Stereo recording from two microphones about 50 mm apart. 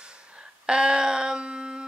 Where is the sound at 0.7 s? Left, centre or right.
Centre.